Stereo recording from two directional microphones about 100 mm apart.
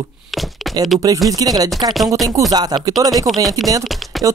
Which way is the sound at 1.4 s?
40° right (ahead or behind).